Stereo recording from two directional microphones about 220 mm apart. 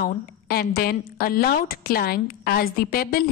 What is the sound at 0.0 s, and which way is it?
A woman's voice, 45° left (ahead or behind).